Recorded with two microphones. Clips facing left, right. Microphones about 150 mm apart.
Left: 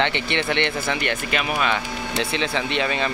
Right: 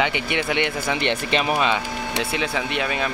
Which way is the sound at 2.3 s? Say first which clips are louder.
Left 2 dB; 10° right (ahead or behind).